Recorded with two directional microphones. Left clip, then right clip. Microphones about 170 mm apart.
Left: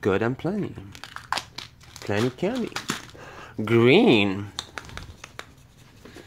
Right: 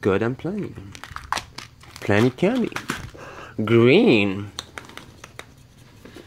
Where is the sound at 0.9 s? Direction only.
15° right (ahead or behind).